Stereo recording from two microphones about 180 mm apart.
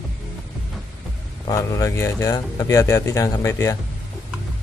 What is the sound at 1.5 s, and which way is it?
Speech, 15° left (ahead or behind).